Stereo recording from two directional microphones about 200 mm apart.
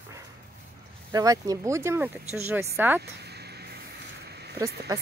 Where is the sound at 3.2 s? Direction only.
55° right (ahead or behind).